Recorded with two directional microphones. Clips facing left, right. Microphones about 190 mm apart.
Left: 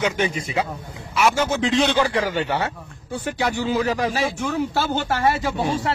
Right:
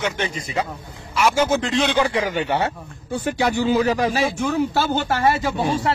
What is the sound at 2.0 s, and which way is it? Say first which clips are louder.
Speech: even; 15° right (ahead or behind).